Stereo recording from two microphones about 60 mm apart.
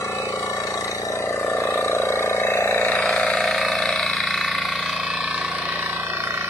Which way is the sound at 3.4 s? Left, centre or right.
Centre.